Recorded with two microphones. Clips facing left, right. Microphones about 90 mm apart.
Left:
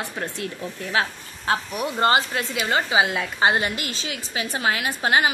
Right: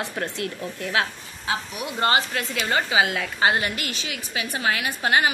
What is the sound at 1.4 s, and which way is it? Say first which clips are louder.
Speech: left 4 dB; 45° left (ahead or behind).